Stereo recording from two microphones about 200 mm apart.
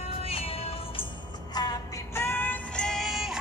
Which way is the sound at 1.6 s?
20° left (ahead or behind).